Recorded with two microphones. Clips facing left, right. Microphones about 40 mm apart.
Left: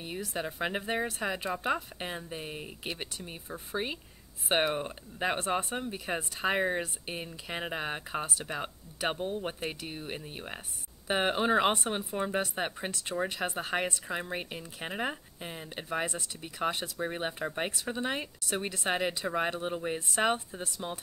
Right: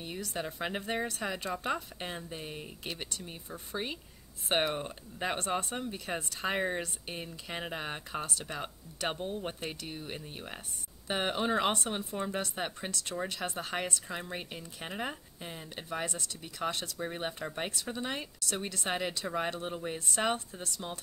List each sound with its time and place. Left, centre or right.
0.0 s speech: centre